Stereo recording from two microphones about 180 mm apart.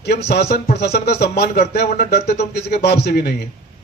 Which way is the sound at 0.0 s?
70° left (ahead or behind).